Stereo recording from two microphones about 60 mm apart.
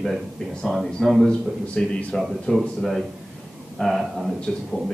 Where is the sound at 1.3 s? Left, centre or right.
Centre.